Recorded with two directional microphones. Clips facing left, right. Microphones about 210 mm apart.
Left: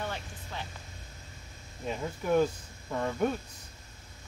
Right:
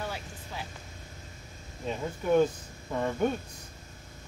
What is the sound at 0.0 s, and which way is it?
Music, 5° right (ahead or behind).